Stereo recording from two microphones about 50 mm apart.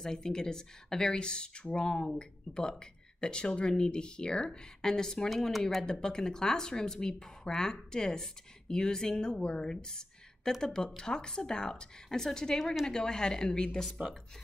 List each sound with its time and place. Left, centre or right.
0.0 s speech: centre